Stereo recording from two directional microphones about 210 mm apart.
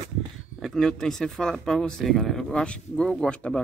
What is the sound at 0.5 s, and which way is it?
Speech, centre (ahead or behind).